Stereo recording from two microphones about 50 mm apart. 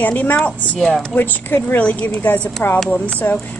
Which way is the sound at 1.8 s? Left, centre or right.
Left.